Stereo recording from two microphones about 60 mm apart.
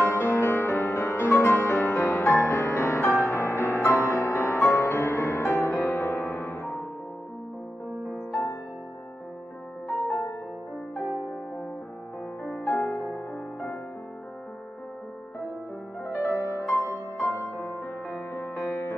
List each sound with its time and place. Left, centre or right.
0.0 s music: left
8.3 s music: left
12.5 s music: centre
16.1 s music: left
17.4 s music: left